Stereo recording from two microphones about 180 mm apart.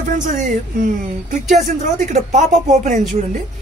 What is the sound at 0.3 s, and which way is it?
Speech, 45° right (ahead or behind).